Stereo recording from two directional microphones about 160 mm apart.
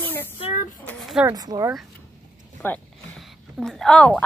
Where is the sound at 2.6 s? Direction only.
10° left (ahead or behind).